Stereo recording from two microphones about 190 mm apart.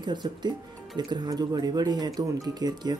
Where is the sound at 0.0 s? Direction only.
25° right (ahead or behind).